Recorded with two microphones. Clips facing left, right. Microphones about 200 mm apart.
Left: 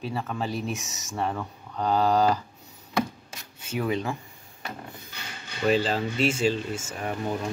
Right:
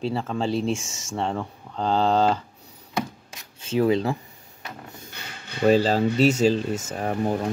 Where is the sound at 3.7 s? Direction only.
30° right (ahead or behind).